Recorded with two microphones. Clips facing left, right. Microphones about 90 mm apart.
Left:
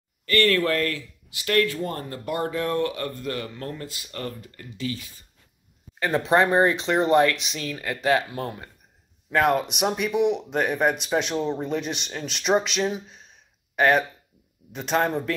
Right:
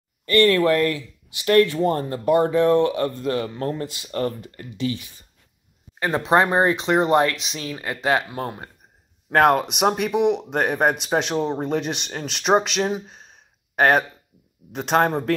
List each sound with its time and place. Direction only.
0.2 s speech: 20° right (ahead or behind)
9.3 s speech: 55° right (ahead or behind)
10.6 s speech: 45° right (ahead or behind)
12.8 s a sound: 45° right (ahead or behind)
14.7 s speech: 50° right (ahead or behind)